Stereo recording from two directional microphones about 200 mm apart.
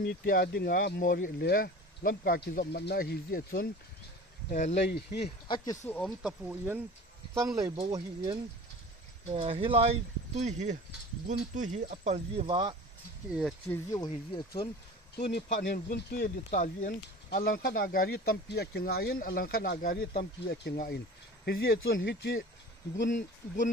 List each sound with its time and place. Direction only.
0.0 s speech: 50° left (ahead or behind)
4.5 s speech: 40° left (ahead or behind)
4.8 s speech: 55° left (ahead or behind)
5.9 s speech: 10° left (ahead or behind)
6.2 s speech: 5° right (ahead or behind); by 12.4 s 35° right (ahead or behind)
12.4 s speech: 20° right (ahead or behind)
13.3 s speech: 5° right (ahead or behind)
13.7 s speech: 15° left (ahead or behind)
15.7 s speech: 45° left (ahead or behind)
23.0 s speech: 40° left (ahead or behind)